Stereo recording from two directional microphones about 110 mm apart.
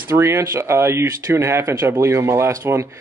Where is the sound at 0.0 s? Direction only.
25° right (ahead or behind).